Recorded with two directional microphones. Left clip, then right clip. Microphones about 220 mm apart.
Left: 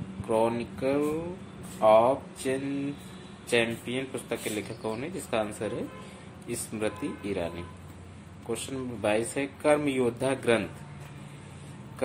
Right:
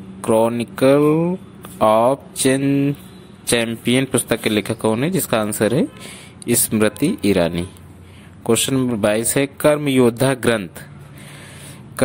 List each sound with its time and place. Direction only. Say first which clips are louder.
0.3 s a man's voice: right 10 dB; 45° right (ahead or behind)